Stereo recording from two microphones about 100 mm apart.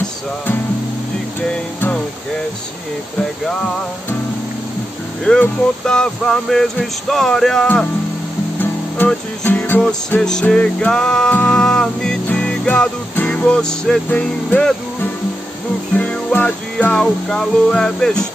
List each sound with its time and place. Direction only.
5.2 s speech: 10° left (ahead or behind)
8.9 s music: 20° left (ahead or behind)
13.1 s speech: 15° left (ahead or behind)
16.0 s music: 10° left (ahead or behind)